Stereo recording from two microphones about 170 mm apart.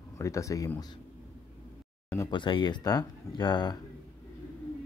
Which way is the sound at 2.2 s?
30° left (ahead or behind).